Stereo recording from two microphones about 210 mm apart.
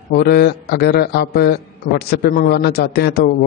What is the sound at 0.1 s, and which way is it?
A man's voice, 50° left (ahead or behind).